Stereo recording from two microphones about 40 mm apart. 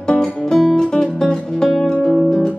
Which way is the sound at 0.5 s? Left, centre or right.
Centre.